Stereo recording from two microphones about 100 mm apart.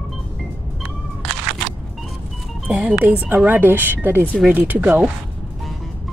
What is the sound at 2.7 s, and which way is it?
Speech, 10° right (ahead or behind).